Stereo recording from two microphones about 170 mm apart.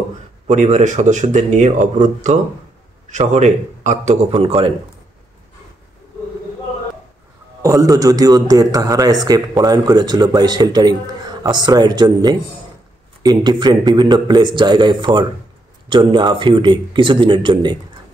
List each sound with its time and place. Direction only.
0.5 s a man's voice: 45° right (ahead or behind)
7.6 s a man's voice: 20° right (ahead or behind)